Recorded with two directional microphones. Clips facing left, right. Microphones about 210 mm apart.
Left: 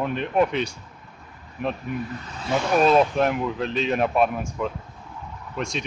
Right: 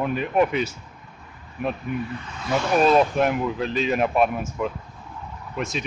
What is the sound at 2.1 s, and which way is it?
Speech, 40° left (ahead or behind).